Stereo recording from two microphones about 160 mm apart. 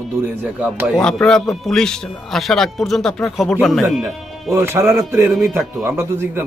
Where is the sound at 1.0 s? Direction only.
5° left (ahead or behind).